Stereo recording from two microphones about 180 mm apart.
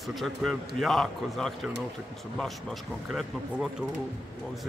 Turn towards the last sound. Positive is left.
turn(degrees=0)  # may be behind; listen again after turning